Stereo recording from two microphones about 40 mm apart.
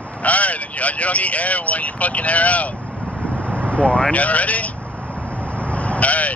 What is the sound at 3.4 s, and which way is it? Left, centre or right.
Vehicle, right.